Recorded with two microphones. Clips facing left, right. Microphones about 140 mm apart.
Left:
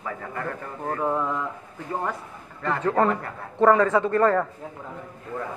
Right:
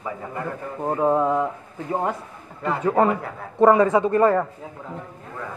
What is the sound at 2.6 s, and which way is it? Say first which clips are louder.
A man's voice: right 2 dB; 10° right (ahead or behind).